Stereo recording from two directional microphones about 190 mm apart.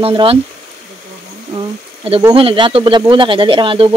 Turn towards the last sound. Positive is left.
turn(degrees=-25)  # may be behind; listen again after turning